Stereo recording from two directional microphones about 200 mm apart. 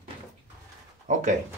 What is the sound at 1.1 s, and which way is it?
Speech, 40° right (ahead or behind).